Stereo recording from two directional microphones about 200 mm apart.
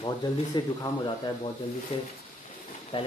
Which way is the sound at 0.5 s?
20° left (ahead or behind).